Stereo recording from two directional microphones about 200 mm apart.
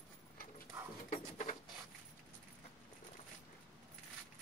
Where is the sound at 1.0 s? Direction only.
40° left (ahead or behind).